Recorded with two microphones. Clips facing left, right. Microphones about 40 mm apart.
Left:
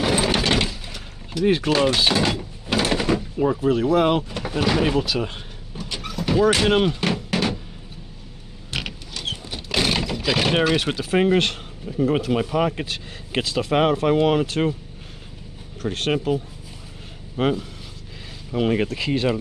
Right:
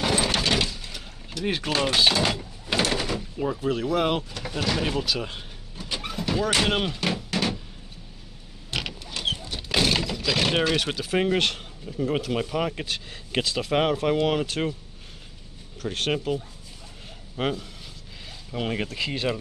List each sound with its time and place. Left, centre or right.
0.0 s a sound: centre
0.9 s boat: centre
1.9 s speech: centre
2.2 s mechanisms: centre
2.9 s door: left
3.2 s speech: centre
4.4 s speech: centre
5.8 s vehicle: centre
6.2 s a sound: centre
6.5 s music: centre
9.7 s speech: centre
15.8 s speech: centre